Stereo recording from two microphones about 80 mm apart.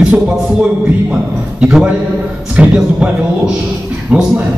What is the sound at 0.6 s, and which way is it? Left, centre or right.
A man's voice, centre.